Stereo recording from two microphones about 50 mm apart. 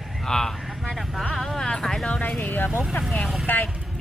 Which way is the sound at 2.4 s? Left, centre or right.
Left.